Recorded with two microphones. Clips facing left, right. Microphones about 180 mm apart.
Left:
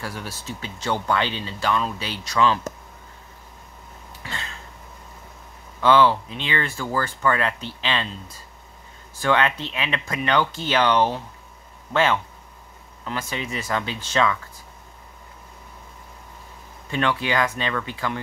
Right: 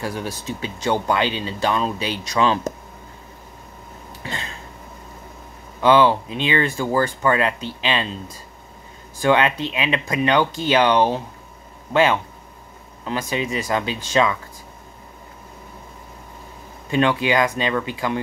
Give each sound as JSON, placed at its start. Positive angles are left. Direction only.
{"t": 0.0, "sound": "speech", "side_deg": -15}
{"t": 4.2, "sound": "a sound", "side_deg": -20}
{"t": 5.8, "sound": "speech", "side_deg": -15}
{"t": 16.9, "sound": "speech", "side_deg": -15}